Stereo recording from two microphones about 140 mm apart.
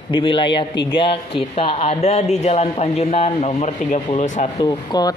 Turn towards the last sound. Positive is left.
turn(degrees=25)  # may be behind; listen again after turning